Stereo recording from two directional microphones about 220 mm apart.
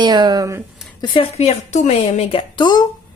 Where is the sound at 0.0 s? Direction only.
20° right (ahead or behind).